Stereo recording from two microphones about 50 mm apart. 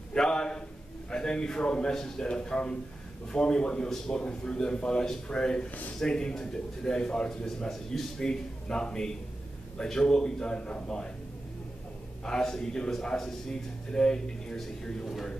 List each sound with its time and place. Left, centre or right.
0.1 s a man's voice: centre
12.3 s a man's voice: centre